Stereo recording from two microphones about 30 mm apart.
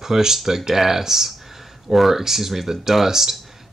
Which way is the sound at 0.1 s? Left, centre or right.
Centre.